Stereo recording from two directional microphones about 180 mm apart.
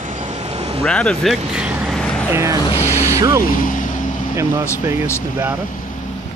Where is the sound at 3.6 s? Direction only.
45° left (ahead or behind).